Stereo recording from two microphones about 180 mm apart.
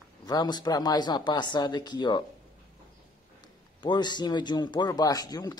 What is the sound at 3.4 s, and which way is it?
A man's voice, 25° left (ahead or behind).